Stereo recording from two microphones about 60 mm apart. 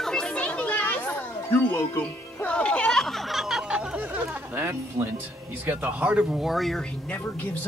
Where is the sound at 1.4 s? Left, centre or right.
Left.